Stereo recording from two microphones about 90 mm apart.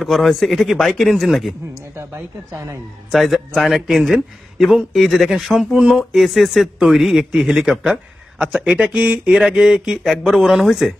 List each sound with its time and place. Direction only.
0.0 s a man's voice: centre (ahead or behind)
2.0 s a woman's voice: 30° right (ahead or behind)
3.1 s a man's voice: 5° right (ahead or behind)